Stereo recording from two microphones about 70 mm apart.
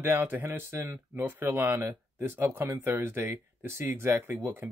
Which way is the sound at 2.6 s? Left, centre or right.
Right.